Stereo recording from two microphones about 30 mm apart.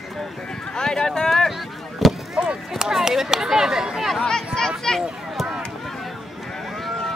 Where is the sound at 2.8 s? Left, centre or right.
Centre.